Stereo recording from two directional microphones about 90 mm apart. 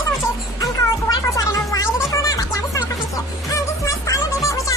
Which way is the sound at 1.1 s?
40° left (ahead or behind).